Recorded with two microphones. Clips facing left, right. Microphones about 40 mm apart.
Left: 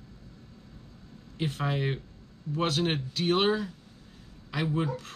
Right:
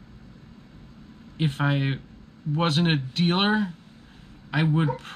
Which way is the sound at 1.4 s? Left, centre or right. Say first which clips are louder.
Right 5 dB; right.